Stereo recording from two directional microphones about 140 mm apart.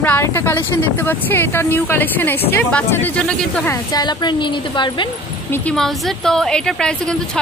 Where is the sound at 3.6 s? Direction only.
25° left (ahead or behind).